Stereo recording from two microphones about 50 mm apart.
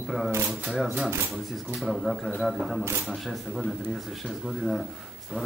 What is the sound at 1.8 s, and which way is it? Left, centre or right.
Speech, centre.